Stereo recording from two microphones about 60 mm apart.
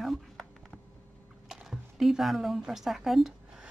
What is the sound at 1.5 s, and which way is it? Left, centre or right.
Speech, centre.